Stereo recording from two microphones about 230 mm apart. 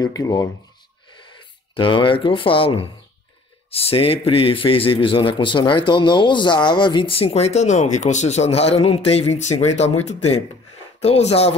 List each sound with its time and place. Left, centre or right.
0.0 s speech: centre
1.8 s a man's voice: left